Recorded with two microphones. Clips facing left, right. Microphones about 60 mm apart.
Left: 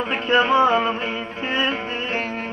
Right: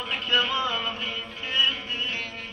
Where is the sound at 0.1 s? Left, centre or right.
Left.